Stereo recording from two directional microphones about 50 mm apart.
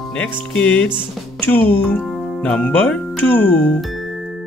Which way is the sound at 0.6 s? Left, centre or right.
Centre.